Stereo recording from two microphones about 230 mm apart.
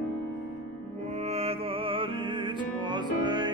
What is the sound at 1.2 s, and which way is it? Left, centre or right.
Music, right.